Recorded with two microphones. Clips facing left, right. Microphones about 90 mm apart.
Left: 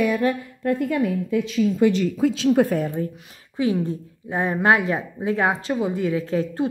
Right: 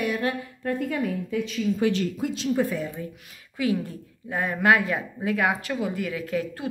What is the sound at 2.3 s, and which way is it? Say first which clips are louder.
Speech: left 5 dB; 65° left (ahead or behind).